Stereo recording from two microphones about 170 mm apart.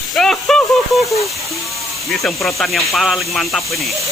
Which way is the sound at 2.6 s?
Centre (ahead or behind).